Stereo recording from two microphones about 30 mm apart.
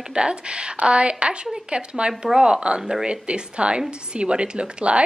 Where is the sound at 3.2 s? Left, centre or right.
Right.